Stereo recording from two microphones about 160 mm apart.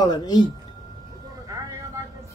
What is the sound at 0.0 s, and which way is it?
Speech, 25° left (ahead or behind).